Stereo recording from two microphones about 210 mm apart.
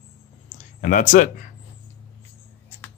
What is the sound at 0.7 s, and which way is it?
Speech, 40° left (ahead or behind).